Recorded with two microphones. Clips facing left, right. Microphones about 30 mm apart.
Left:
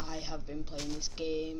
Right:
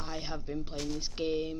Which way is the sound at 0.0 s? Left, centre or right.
Centre.